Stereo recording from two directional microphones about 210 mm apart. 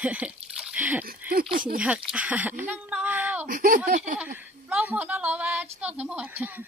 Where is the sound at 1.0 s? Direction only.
45° right (ahead or behind).